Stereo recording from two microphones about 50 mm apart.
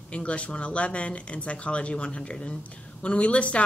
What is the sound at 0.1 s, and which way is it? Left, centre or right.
Speech, left.